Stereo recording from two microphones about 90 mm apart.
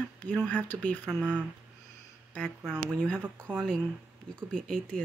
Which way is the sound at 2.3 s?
10° left (ahead or behind).